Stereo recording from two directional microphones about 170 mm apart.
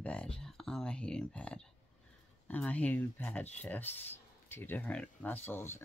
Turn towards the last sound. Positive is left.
turn(degrees=10)  # may be behind; listen again after turning